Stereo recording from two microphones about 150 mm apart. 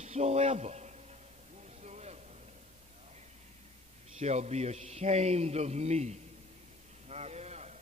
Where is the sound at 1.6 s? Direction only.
50° right (ahead or behind).